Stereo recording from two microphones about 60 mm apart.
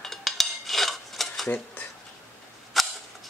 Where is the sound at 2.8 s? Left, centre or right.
Centre.